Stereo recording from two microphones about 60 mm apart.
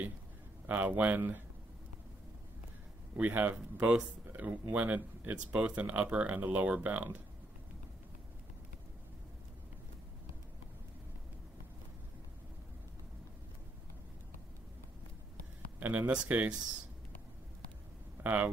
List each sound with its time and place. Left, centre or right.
0.7 s speech: right
3.2 s speech: right
15.8 s speech: right
18.2 s speech: right